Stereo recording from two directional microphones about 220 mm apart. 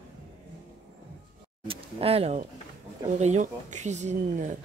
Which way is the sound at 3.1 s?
30° right (ahead or behind).